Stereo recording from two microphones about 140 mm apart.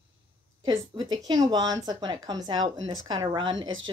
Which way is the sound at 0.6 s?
35° right (ahead or behind).